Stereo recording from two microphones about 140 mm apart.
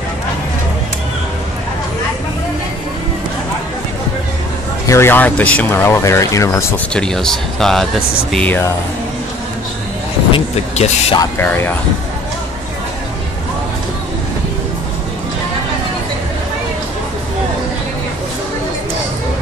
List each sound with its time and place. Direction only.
4.8 s speech: 20° left (ahead or behind)
6.9 s speech: 5° left (ahead or behind)
10.3 s speech: 45° left (ahead or behind)
11.3 s speech: 15° left (ahead or behind)